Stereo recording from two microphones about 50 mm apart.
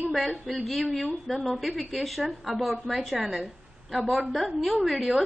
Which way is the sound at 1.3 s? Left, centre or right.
Centre.